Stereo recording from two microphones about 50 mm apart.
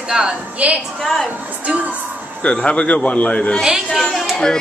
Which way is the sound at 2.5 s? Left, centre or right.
Left.